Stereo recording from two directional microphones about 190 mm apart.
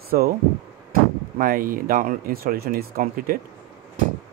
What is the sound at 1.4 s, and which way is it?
Speech, 50° right (ahead or behind).